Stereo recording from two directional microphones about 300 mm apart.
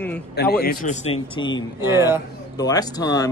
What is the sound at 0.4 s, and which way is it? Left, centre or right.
Speech, left.